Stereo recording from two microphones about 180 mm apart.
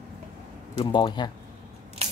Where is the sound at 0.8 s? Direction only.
25° left (ahead or behind).